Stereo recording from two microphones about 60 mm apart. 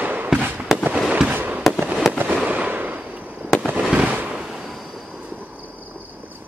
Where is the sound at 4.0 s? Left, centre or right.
Right.